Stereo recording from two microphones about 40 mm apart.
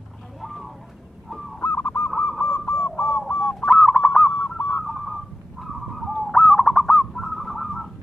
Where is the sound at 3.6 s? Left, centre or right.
Centre.